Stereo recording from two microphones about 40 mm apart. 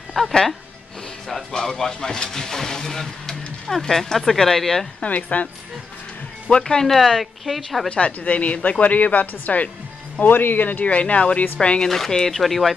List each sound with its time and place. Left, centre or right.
0.2 s speech: centre
1.5 s speech: centre
5.0 s speech: left
6.5 s speech: left
6.8 s a woman's voice: centre
7.9 s speech: left
10.2 s speech: left
11.9 s a woman's voice: centre